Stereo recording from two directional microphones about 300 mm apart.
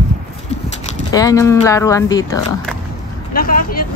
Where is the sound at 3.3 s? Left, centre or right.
Left.